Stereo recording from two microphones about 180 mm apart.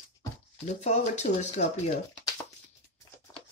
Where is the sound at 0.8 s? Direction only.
40° left (ahead or behind).